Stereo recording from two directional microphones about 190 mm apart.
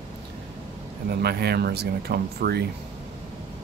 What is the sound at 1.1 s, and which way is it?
Speech, 60° right (ahead or behind).